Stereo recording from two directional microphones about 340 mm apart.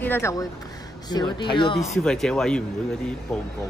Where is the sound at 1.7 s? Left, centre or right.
Centre.